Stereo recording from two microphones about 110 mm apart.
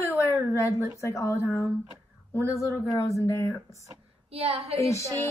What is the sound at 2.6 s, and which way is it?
Speech, 30° left (ahead or behind).